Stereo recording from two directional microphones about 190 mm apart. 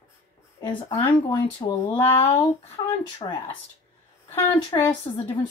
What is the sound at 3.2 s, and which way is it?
Speech, 25° left (ahead or behind).